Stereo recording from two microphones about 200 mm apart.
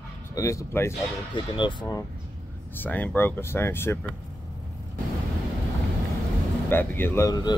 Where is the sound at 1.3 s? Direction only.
25° left (ahead or behind).